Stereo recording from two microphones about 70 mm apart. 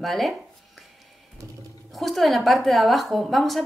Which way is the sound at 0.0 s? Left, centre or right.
Centre.